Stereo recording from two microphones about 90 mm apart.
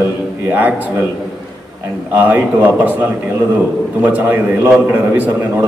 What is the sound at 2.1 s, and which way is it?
A man's voice, 20° right (ahead or behind).